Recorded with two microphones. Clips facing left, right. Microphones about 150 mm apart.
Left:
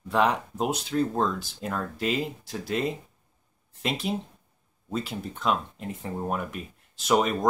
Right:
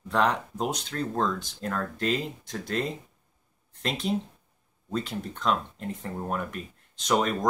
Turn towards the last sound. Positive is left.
turn(degrees=5)  # may be behind; listen again after turning